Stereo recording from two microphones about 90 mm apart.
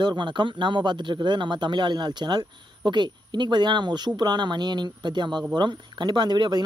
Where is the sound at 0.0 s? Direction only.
60° right (ahead or behind).